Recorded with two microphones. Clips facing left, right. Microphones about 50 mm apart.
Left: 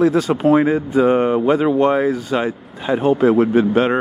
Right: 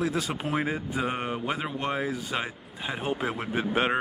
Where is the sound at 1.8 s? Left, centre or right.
Left.